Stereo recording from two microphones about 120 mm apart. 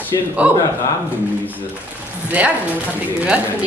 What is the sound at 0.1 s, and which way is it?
Speech, 30° left (ahead or behind).